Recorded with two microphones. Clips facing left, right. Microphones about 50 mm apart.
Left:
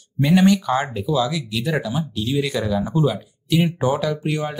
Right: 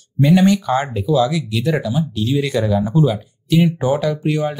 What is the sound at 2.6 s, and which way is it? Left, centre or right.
Speech, centre.